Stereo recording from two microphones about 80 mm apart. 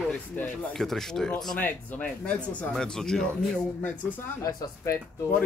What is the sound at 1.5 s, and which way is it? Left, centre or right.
Speech, left.